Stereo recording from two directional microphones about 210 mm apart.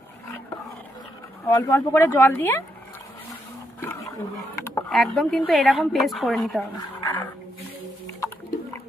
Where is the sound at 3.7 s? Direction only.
15° left (ahead or behind).